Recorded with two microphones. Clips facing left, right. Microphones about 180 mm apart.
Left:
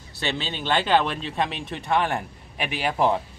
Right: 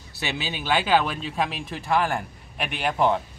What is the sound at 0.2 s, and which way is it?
Speech, 10° right (ahead or behind).